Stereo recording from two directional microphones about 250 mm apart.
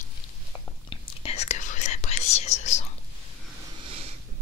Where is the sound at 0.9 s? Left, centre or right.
Left.